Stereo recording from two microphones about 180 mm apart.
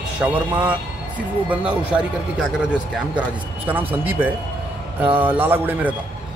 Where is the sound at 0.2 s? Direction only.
10° right (ahead or behind).